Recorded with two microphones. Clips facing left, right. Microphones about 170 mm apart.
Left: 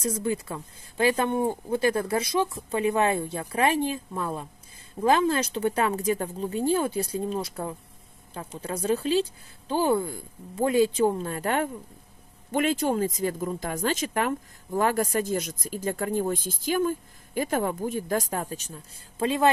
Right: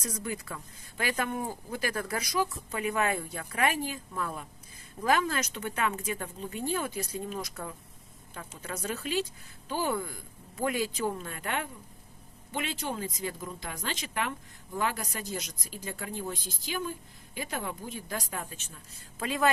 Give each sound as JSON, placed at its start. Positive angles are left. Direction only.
{"t": 0.0, "sound": "speech", "side_deg": 25}